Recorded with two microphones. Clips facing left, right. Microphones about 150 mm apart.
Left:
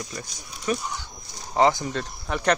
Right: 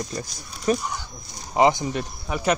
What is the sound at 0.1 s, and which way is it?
Speech, 35° right (ahead or behind).